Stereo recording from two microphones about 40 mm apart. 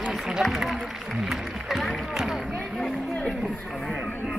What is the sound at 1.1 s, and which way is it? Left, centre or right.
Music, centre.